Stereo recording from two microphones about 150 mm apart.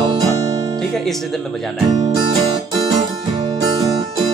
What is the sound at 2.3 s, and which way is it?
Music, 40° right (ahead or behind).